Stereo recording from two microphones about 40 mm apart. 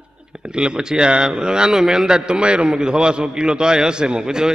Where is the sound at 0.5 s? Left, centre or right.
Right.